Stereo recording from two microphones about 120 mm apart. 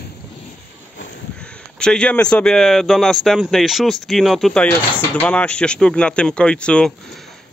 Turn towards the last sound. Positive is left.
turn(degrees=5)  # may be behind; listen again after turning